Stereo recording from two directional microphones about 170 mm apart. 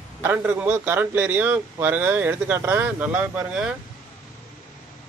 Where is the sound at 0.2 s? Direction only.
10° right (ahead or behind).